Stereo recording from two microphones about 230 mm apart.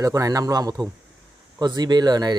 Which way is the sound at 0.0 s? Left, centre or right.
Centre.